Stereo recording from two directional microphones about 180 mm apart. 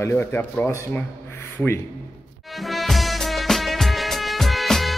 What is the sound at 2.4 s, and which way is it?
Music, centre (ahead or behind).